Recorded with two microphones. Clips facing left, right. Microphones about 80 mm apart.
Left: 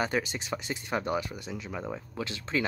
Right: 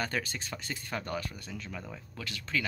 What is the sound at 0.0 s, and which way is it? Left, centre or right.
Speech, centre.